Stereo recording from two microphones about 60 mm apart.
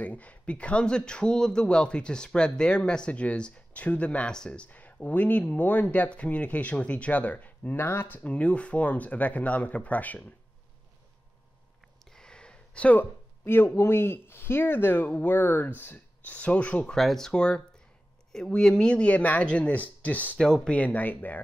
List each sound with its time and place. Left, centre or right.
0.0 s speech: left
4.6 s speech: left
7.8 s speech: left
12.0 s a sound: centre
13.7 s speech: left
16.3 s speech: left
16.9 s speech: centre
17.3 s speech: centre
20.3 s speech: centre
20.7 s speech: left